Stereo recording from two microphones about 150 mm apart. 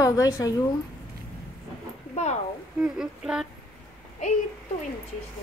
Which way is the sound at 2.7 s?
5° right (ahead or behind).